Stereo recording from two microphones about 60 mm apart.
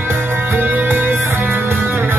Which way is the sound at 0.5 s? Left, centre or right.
Right.